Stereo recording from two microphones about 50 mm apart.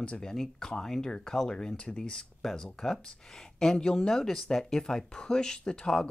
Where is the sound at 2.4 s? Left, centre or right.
Centre.